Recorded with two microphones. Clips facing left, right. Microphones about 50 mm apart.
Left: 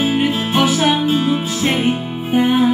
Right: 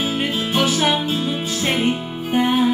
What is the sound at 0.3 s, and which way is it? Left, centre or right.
Music, left.